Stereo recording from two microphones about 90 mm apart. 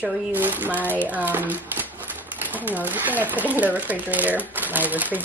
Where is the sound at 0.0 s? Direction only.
20° right (ahead or behind).